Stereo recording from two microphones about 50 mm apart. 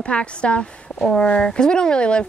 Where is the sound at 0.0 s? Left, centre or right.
Left.